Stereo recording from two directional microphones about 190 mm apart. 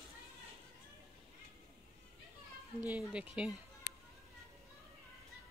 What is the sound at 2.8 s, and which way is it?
Speech, 5° right (ahead or behind).